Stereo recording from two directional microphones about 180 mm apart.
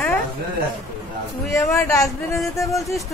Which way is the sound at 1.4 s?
15° left (ahead or behind).